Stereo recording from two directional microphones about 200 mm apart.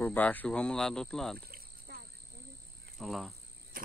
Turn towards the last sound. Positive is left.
turn(degrees=0)  # may be behind; listen again after turning